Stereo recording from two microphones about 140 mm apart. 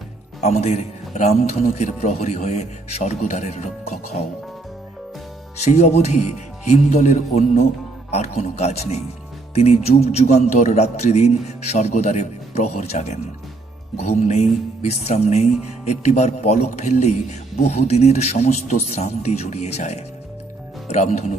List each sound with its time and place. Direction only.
0.4 s speech: 50° left (ahead or behind)
5.6 s speech: 50° left (ahead or behind)